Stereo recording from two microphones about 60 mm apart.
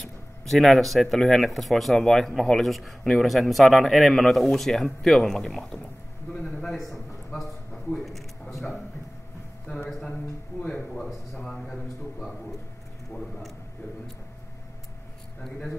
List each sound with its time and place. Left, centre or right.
0.5 s a man's voice: centre
8.5 s speech: centre
9.7 s speech: left
10.6 s speech: centre
11.3 s a man's voice: centre